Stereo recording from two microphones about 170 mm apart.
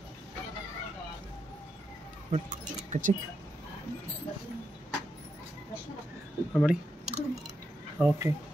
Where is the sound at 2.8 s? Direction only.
50° right (ahead or behind).